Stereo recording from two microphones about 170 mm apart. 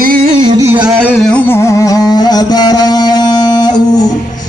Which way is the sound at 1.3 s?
10° left (ahead or behind).